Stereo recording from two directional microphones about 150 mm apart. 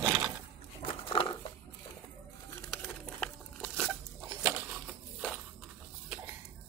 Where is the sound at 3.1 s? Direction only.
5° left (ahead or behind).